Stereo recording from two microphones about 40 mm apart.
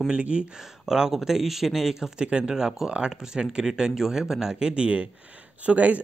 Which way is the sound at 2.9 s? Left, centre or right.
Right.